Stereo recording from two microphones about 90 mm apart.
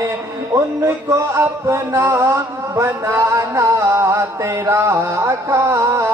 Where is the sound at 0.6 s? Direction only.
30° right (ahead or behind).